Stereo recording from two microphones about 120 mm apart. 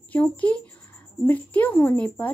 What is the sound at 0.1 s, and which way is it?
A woman's voice, 10° left (ahead or behind).